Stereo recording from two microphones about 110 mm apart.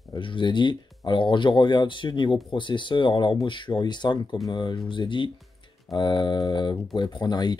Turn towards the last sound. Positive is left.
turn(degrees=40)  # may be behind; listen again after turning